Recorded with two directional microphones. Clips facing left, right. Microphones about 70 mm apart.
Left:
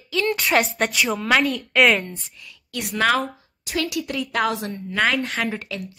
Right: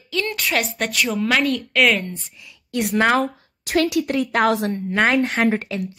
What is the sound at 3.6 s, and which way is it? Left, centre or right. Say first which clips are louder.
A woman's voice: right 6 dB; right.